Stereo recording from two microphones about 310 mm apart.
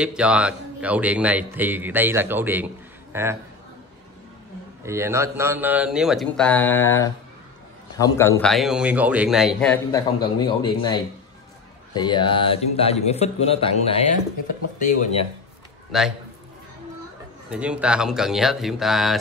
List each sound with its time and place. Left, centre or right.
0.0 s a man's voice: centre
4.8 s a man's voice: centre
15.9 s a man's voice: centre
17.5 s a man's voice: centre